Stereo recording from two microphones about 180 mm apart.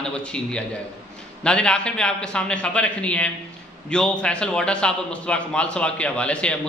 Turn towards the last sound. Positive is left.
turn(degrees=5)  # may be behind; listen again after turning